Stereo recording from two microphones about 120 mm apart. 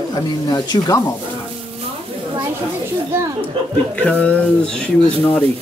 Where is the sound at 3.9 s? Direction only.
10° left (ahead or behind).